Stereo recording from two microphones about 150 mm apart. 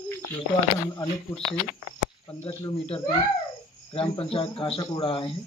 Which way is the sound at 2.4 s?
40° left (ahead or behind).